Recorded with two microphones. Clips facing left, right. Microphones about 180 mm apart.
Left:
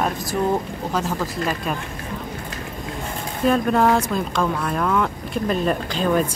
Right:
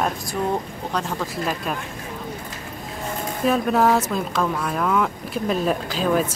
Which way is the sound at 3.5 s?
5° right (ahead or behind).